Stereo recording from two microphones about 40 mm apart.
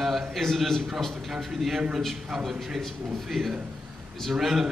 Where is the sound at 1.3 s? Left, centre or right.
Centre.